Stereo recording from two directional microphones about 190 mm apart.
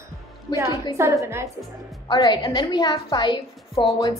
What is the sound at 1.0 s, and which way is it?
Speech, 15° right (ahead or behind).